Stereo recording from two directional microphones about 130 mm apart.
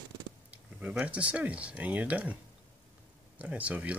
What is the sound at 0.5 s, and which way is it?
Speech, 10° right (ahead or behind).